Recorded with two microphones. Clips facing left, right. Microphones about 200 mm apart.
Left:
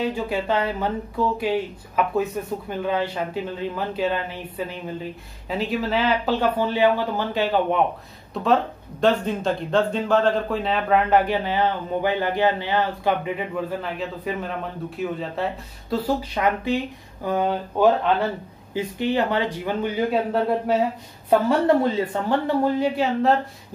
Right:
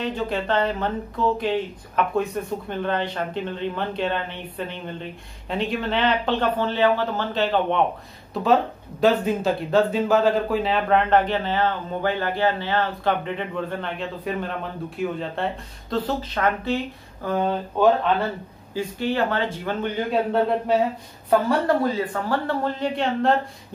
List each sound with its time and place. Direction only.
0.0 s speech: 10° left (ahead or behind)
8.3 s speech: centre (ahead or behind)
21.3 s speech: 25° left (ahead or behind); by 23.3 s 5° left (ahead or behind)